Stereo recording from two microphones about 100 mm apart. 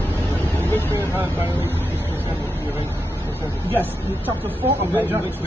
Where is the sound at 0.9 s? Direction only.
25° right (ahead or behind).